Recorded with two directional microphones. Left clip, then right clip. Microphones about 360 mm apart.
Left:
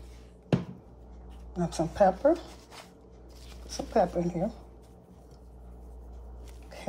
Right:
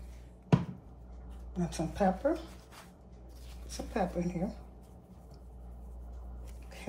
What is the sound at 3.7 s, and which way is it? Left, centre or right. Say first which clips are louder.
Speech: left 8 dB; centre.